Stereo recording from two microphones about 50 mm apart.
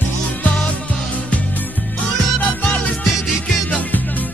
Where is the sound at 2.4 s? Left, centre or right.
Left.